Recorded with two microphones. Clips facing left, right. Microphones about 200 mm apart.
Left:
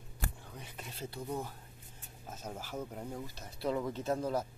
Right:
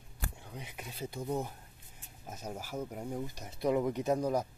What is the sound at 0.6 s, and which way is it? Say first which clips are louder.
Speech: right 3 dB; 15° right (ahead or behind).